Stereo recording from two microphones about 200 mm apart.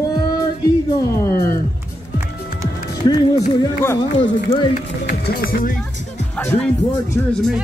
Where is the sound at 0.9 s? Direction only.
15° left (ahead or behind).